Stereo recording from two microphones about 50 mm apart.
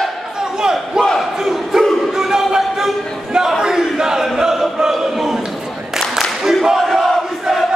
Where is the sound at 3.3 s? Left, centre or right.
Centre.